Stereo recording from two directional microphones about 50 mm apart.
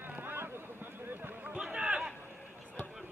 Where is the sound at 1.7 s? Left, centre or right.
Centre.